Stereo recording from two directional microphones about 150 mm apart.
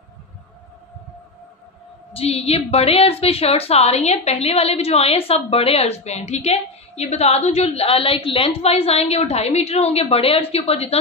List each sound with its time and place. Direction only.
2.1 s a woman's voice: 40° left (ahead or behind)